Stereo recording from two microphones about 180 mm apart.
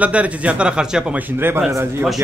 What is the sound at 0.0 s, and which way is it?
A man's voice, 5° right (ahead or behind).